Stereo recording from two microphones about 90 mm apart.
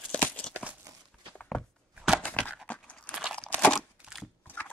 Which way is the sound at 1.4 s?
10° left (ahead or behind).